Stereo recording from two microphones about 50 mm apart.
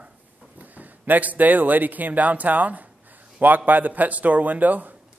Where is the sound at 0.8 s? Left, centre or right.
Right.